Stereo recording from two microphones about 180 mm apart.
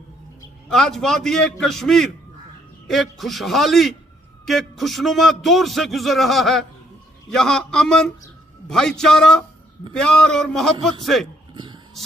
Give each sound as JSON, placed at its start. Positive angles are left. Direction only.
{"t": 0.7, "sound": "a man's voice", "side_deg": 0}
{"t": 11.5, "sound": "dog", "side_deg": -25}